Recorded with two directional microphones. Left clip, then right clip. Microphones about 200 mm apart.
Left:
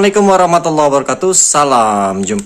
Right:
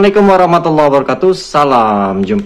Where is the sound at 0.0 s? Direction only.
20° left (ahead or behind).